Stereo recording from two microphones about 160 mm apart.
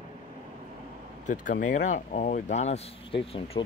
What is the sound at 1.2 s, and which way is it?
Speech, 55° left (ahead or behind).